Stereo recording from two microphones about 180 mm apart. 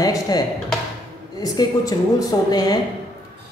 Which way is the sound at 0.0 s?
20° left (ahead or behind).